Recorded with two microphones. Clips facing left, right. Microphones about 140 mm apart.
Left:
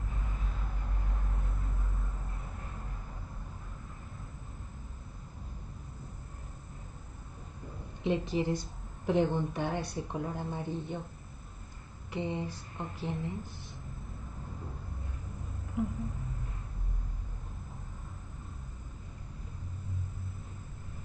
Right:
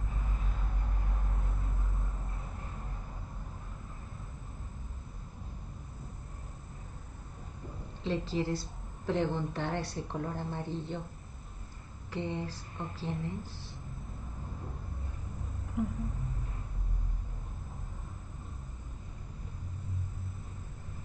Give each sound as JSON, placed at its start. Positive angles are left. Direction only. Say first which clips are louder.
{"t": 8.0, "sound": "a woman's voice", "louder": "left 2 dB", "side_deg": 15}
{"t": 12.1, "sound": "a woman's voice", "louder": "left 1 dB", "side_deg": 20}
{"t": 15.8, "sound": "speech", "louder": "even", "side_deg": 0}